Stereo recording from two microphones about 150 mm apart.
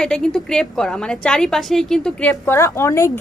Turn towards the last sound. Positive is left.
turn(degrees=20)  # may be behind; listen again after turning